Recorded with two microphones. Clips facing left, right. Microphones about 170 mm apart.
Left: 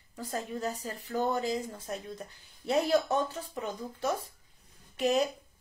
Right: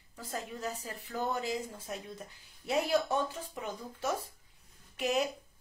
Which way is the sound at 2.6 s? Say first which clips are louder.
Left 3 dB; 35° left (ahead or behind).